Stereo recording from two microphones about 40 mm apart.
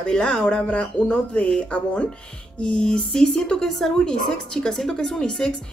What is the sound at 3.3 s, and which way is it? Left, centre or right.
Speech, left.